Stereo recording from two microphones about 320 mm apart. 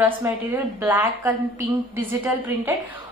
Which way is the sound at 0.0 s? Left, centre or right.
Centre.